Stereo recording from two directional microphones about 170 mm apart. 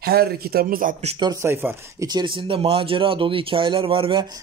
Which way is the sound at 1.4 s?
15° right (ahead or behind).